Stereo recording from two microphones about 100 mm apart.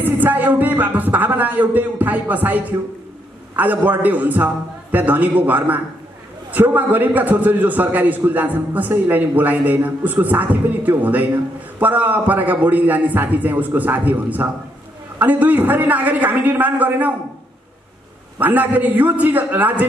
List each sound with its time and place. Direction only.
0.0 s a man's voice: 20° right (ahead or behind)
18.4 s a man's voice: 15° right (ahead or behind)